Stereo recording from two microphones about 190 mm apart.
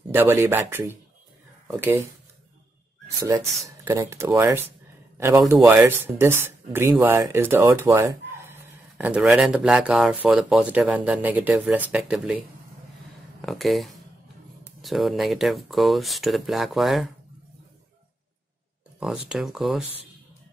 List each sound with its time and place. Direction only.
0.1 s speech: 10° right (ahead or behind)
3.2 s speech: 15° right (ahead or behind)
5.1 s a sound: 10° right (ahead or behind)
5.5 s speech: 10° right (ahead or behind)
18.9 s speech: centre (ahead or behind)